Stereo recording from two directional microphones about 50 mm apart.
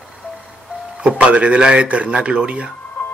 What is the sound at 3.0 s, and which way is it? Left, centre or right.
Music, left.